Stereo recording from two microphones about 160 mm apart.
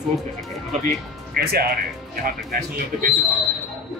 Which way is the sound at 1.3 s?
75° right (ahead or behind).